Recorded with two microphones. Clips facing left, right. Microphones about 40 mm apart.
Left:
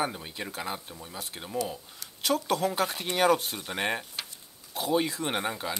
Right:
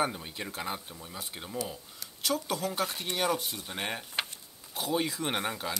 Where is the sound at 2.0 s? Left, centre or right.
Centre.